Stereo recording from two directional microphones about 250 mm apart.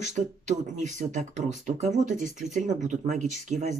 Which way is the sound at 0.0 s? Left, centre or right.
Right.